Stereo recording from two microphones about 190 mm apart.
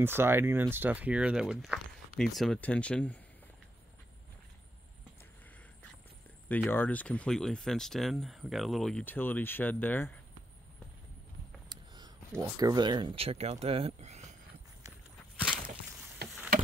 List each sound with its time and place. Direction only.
0.0 s speech: 10° right (ahead or behind); by 3.2 s 5° left (ahead or behind)
6.5 s speech: 10° left (ahead or behind)
11.7 s speech: 20° right (ahead or behind)